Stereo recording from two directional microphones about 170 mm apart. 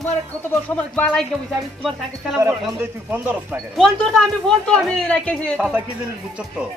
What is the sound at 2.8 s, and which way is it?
Speech, 10° right (ahead or behind).